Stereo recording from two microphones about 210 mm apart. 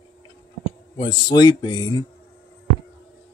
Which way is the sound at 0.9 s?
20° left (ahead or behind).